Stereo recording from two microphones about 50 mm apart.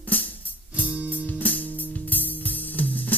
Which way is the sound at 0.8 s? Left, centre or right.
Right.